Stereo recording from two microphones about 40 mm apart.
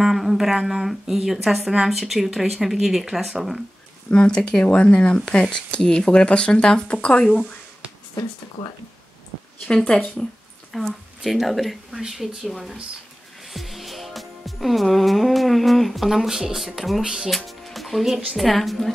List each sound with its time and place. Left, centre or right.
0.0 s a sound: centre
0.6 s speech: centre
4.1 s speech: left
9.7 s speech: centre
10.7 s speech: centre
13.5 s music: centre
17.0 s speech: centre
17.5 s music: centre
18.3 s speech: centre